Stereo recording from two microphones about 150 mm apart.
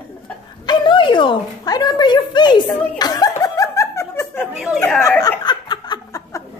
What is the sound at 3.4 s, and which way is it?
Snicker, 20° left (ahead or behind).